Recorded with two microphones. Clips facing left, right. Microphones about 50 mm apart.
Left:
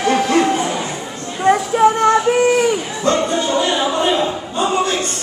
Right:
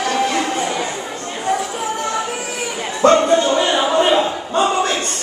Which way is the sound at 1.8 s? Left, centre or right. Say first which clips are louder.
Left 11 dB; left.